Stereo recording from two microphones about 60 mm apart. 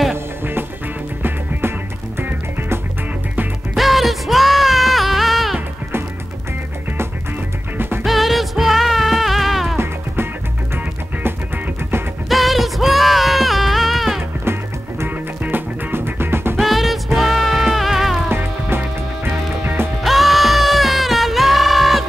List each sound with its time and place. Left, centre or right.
0.1 s music: right
3.7 s music: centre
7.7 s music: right
8.0 s music: centre
11.2 s music: right
12.3 s music: centre
14.4 s music: right
15.0 s music: right
16.5 s music: centre
18.3 s music: right
20.0 s music: centre